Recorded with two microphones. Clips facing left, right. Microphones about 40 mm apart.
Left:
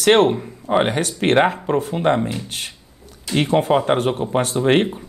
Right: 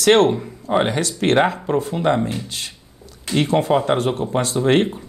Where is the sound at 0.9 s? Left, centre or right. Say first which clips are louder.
Left 1 dB; left.